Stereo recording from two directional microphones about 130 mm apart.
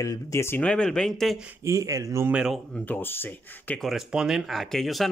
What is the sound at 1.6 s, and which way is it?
Speech, 25° right (ahead or behind).